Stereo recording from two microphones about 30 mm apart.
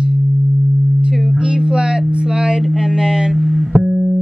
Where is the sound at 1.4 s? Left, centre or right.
Right.